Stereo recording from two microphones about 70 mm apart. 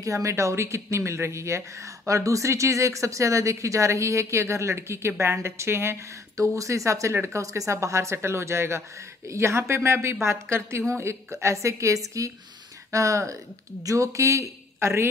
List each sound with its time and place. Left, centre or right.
0.0 s a woman's voice: right
6.3 s a woman's voice: right